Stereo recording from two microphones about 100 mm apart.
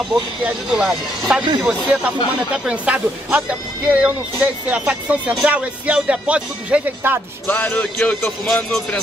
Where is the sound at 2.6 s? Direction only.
10° right (ahead or behind).